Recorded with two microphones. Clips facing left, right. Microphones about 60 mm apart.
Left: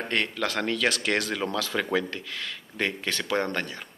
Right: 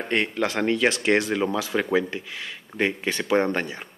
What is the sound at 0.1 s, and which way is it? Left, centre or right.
Speech, right.